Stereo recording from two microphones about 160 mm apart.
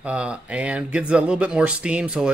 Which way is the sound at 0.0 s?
5° right (ahead or behind).